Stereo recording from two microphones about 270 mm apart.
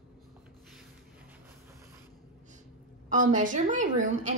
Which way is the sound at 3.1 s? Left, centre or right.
Right.